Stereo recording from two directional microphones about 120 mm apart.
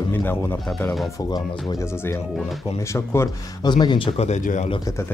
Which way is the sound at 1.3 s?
35° left (ahead or behind).